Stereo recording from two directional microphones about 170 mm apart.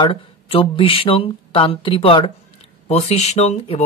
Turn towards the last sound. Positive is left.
turn(degrees=40)  # may be behind; listen again after turning